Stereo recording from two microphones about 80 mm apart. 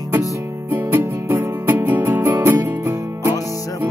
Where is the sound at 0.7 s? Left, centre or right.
Right.